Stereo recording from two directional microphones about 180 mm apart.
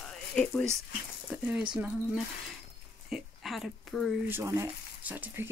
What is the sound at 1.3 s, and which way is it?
Speech, 5° right (ahead or behind).